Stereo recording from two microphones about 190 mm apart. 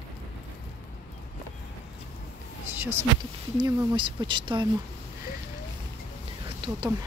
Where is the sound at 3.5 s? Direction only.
20° right (ahead or behind).